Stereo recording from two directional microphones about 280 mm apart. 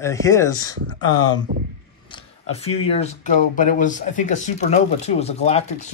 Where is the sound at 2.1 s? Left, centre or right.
Centre.